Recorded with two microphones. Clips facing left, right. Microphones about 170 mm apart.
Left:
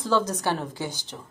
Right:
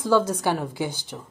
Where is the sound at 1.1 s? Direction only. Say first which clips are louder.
Right 3 dB; 5° right (ahead or behind).